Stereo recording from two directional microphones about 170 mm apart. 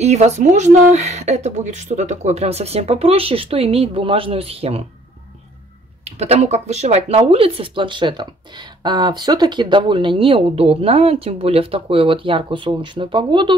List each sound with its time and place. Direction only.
0.0 s speech: 40° right (ahead or behind)
6.0 s speech: 40° right (ahead or behind)